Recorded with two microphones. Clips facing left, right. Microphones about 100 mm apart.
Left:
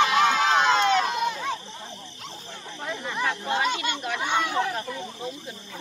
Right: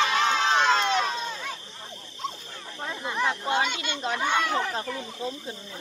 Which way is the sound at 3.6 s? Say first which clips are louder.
Left 5 dB; 40° left (ahead or behind).